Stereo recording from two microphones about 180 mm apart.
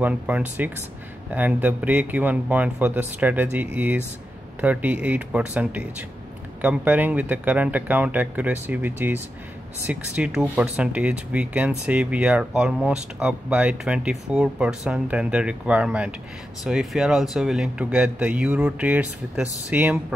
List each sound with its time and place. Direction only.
0.0 s speech: 10° right (ahead or behind)